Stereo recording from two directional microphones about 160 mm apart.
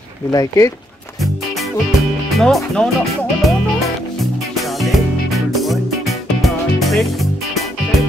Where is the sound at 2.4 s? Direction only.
Centre (ahead or behind).